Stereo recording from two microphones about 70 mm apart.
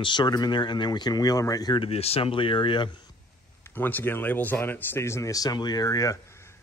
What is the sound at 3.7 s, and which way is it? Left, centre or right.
Speech, left.